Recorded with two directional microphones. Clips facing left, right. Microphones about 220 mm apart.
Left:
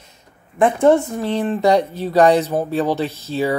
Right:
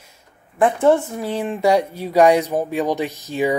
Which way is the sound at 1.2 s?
10° right (ahead or behind).